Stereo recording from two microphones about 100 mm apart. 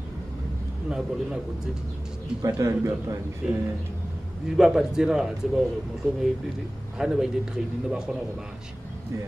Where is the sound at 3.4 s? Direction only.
10° right (ahead or behind).